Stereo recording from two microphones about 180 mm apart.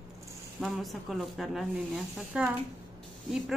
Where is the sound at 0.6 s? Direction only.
Centre (ahead or behind).